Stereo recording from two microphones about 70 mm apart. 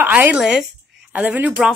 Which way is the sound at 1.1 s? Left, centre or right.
Right.